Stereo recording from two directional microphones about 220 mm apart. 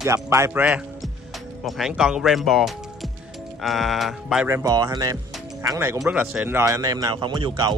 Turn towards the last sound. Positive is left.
turn(degrees=-20)  # may be behind; listen again after turning